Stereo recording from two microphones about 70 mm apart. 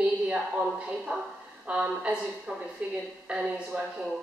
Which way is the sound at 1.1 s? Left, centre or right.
Right.